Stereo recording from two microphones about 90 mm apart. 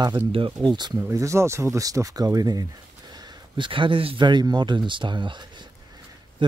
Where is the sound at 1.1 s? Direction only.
35° right (ahead or behind).